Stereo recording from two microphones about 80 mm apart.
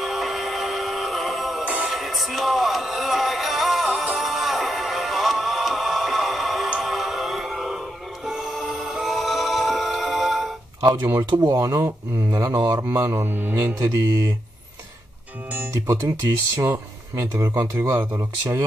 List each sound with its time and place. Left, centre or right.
0.0 s music: centre
1.6 s music: centre
1.9 s music: centre
10.8 s speech: right
12.7 s speech: right
13.7 s speech: right
15.7 s speech: right